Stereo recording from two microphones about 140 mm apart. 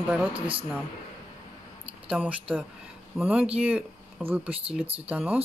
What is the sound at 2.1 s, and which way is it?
Speech, 10° right (ahead or behind).